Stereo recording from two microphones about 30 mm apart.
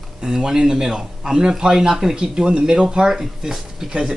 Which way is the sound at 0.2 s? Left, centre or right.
Right.